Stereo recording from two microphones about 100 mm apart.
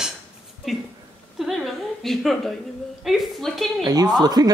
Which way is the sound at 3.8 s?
40° right (ahead or behind).